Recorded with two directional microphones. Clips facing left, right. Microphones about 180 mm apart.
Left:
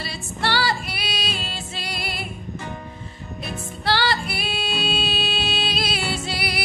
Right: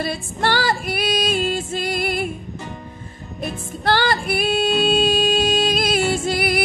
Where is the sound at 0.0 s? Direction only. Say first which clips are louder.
Right 5 dB; 50° right (ahead or behind).